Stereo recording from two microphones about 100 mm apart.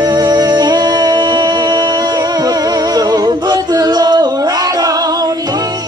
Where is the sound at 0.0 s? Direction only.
45° right (ahead or behind).